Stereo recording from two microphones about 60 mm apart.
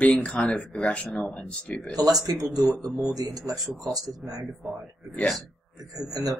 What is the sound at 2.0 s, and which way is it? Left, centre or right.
Speech, right.